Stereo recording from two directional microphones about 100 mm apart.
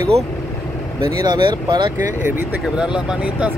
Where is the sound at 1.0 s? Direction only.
45° right (ahead or behind).